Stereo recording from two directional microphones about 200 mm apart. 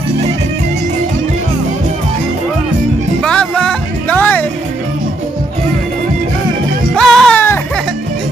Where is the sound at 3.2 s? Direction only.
5° left (ahead or behind).